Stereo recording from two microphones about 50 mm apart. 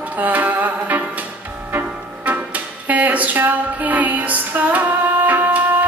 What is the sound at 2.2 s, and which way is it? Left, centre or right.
Music, right.